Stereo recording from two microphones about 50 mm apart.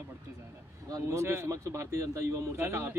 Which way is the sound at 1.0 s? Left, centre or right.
Right.